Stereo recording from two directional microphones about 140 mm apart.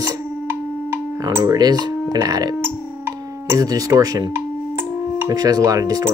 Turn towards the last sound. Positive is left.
turn(degrees=-25)  # may be behind; listen again after turning